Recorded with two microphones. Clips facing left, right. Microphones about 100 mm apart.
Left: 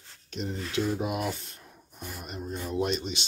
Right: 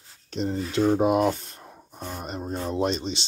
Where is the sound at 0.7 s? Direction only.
45° right (ahead or behind).